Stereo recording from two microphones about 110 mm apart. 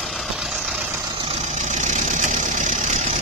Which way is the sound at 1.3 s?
90° right.